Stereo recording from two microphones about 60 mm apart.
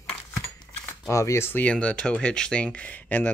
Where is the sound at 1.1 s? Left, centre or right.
Left.